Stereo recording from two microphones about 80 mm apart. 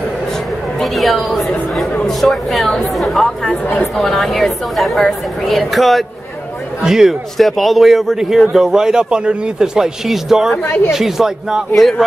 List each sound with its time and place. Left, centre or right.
0.7 s a man's voice: centre
3.6 s a woman's voice: left
3.9 s a man's voice: centre
10.5 s a woman's voice: left
10.9 s a man's voice: centre